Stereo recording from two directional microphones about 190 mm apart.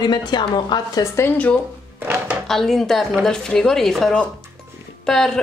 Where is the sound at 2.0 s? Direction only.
10° right (ahead or behind).